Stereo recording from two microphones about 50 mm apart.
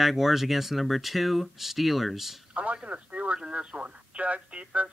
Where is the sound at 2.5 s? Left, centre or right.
Right.